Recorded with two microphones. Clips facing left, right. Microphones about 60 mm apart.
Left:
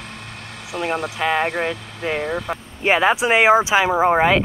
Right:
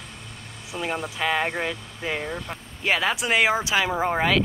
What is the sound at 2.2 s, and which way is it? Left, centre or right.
Speech, left.